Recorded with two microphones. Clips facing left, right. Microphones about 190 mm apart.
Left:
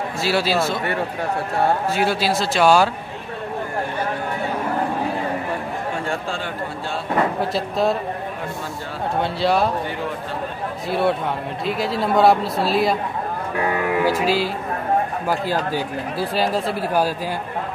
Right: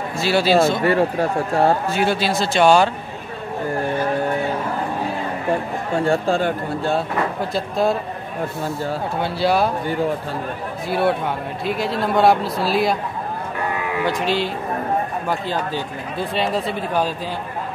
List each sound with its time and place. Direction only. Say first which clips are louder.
0.2 s speech: right 4 dB; centre (ahead or behind)
0.7 s speech: right 6 dB; 30° right (ahead or behind)
1.9 s speech: even; 5° left (ahead or behind)
6.0 s speech: right 8 dB; 40° right (ahead or behind)
7.5 s speech: right 3 dB; centre (ahead or behind)
9.2 s speech: right 1 dB; centre (ahead or behind)
10.9 s speech: right 1 dB; centre (ahead or behind)
13.7 s speech: left 4 dB; 50° left (ahead or behind)
14.0 s speech: right 1 dB; 5° left (ahead or behind)
15.7 s speech: left 2 dB; 5° left (ahead or behind)